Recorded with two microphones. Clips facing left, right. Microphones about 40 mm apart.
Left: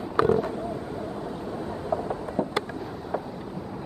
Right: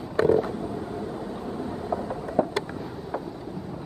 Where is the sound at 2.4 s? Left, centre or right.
Right.